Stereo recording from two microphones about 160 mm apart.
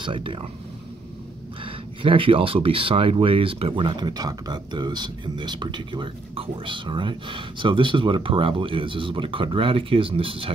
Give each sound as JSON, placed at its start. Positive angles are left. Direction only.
{"t": 0.0, "sound": "speech", "side_deg": -30}
{"t": 2.0, "sound": "speech", "side_deg": -35}